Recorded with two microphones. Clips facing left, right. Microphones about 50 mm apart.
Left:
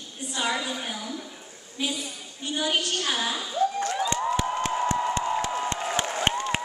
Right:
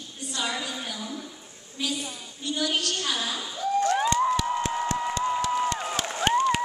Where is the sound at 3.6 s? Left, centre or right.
Left.